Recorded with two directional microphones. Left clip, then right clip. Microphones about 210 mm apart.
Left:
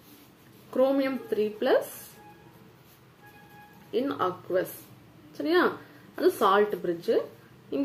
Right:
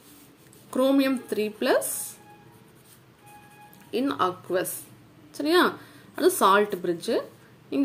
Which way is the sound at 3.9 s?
40° right (ahead or behind).